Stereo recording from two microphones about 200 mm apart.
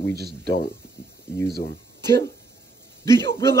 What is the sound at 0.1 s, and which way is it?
Speech, 50° right (ahead or behind).